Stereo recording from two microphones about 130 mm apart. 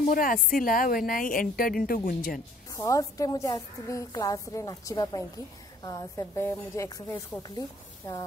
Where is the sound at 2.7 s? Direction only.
25° left (ahead or behind).